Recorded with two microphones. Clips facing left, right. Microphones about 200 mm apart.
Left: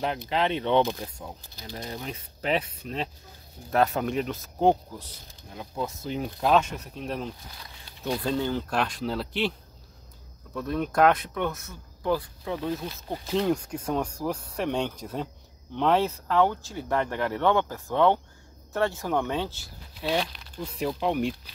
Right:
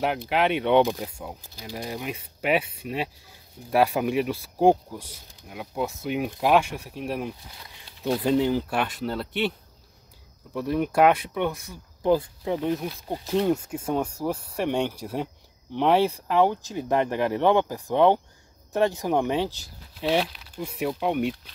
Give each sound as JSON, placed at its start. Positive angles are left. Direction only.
{"t": 0.3, "sound": "speech", "side_deg": -10}
{"t": 10.5, "sound": "speech", "side_deg": -10}
{"t": 12.0, "sound": "speech", "side_deg": -25}
{"t": 13.3, "sound": "speech", "side_deg": -5}
{"t": 20.2, "sound": "speech", "side_deg": -5}